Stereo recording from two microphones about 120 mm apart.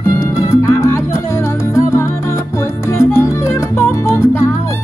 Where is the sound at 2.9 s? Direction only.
20° left (ahead or behind).